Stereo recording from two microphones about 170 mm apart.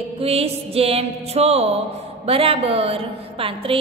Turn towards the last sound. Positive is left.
turn(degrees=-35)  # may be behind; listen again after turning